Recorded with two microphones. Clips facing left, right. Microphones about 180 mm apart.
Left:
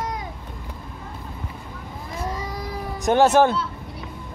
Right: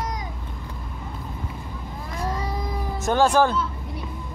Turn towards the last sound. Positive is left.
turn(degrees=20)  # may be behind; listen again after turning